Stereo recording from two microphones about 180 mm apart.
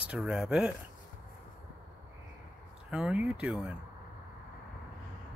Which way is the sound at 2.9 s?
5° right (ahead or behind).